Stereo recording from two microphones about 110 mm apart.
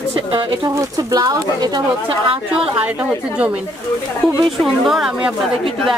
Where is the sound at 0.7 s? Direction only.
35° right (ahead or behind).